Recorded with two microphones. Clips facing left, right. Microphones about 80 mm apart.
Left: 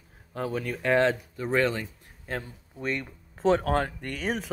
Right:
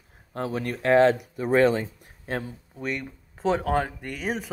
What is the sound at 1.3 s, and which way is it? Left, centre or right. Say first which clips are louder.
Speech: right 5 dB; centre.